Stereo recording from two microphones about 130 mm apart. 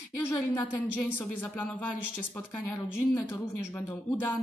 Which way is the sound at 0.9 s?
15° left (ahead or behind).